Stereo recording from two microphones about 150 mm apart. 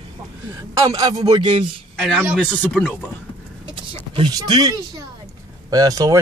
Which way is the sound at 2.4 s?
10° left (ahead or behind).